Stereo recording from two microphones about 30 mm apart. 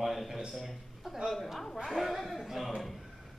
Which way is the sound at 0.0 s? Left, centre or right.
Centre.